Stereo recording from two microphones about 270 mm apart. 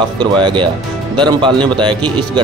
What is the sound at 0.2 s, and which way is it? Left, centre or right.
Speech, centre.